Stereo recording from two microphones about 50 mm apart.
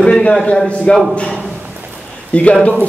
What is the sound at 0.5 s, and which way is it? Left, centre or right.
Speech, left.